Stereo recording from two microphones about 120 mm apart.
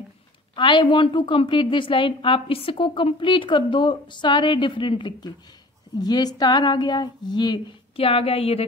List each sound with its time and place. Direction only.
0.6 s a woman's voice: 40° left (ahead or behind)
8.0 s a woman's voice: 50° left (ahead or behind)